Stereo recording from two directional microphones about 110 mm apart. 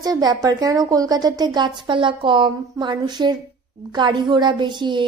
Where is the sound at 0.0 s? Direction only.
35° right (ahead or behind).